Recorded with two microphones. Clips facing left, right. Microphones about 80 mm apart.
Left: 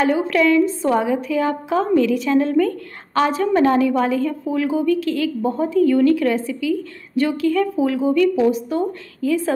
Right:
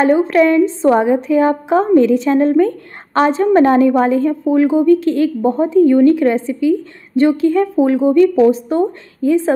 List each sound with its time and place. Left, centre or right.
0.0 s a woman's voice: right